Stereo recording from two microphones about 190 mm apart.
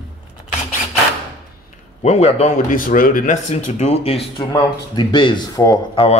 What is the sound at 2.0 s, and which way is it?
Speech, 35° left (ahead or behind).